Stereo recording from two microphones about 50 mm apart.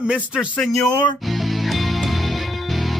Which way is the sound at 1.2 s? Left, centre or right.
Centre.